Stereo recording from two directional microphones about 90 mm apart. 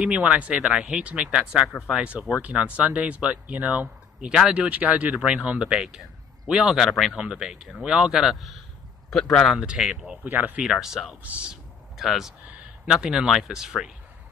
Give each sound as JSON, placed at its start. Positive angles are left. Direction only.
{"t": 0.0, "sound": "speech", "side_deg": -15}
{"t": 9.7, "sound": "speech", "side_deg": -10}
{"t": 10.2, "sound": "speech", "side_deg": -20}
{"t": 10.6, "sound": "speech", "side_deg": -5}
{"t": 11.2, "sound": "speech", "side_deg": -15}
{"t": 12.0, "sound": "speech", "side_deg": 0}